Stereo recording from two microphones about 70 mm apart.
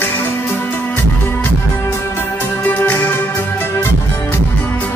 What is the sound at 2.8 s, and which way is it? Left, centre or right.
Music, left.